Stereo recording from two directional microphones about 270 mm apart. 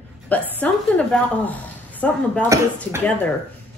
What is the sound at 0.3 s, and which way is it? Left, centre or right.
A woman's voice, centre.